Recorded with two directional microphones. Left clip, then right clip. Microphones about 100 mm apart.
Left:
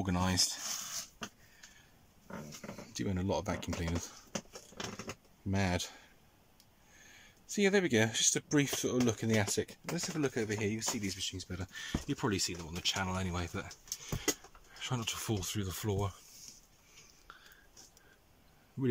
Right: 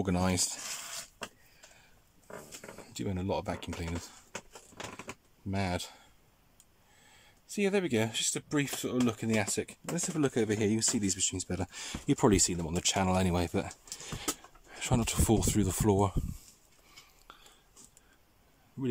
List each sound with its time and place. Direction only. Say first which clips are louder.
0.0 s speech: right 2 dB; 30° right (ahead or behind)
2.8 s speech: right 1 dB; 20° right (ahead or behind)
5.5 s speech: even; 10° right (ahead or behind)
7.4 s speech: even; 10° right (ahead or behind)
9.9 s speech: right 4 dB; 30° right (ahead or behind); by 13.0 s 90° right
13.0 s speech: right 8 dB; 55° right (ahead or behind)
17.3 s whispering: right 1 dB; 30° right (ahead or behind)